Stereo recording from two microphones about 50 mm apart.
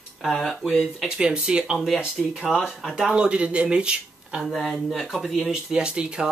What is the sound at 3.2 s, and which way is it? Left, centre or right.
Speech, right.